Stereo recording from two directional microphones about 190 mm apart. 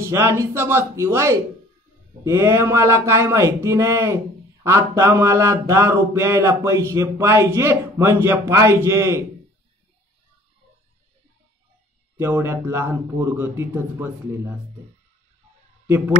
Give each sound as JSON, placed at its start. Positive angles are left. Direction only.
{"t": 0.0, "sound": "speech", "side_deg": -15}
{"t": 12.2, "sound": "speech", "side_deg": -15}